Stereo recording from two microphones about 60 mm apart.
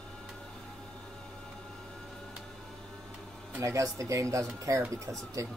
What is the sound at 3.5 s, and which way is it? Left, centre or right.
Speech, right.